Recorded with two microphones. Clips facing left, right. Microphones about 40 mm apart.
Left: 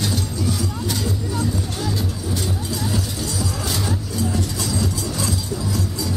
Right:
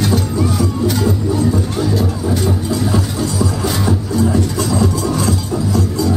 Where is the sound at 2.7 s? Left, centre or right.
Centre.